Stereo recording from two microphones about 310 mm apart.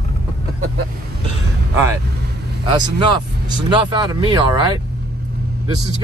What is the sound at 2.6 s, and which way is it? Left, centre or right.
Speech, centre.